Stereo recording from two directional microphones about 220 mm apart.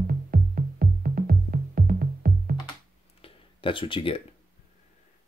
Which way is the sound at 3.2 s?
25° left (ahead or behind).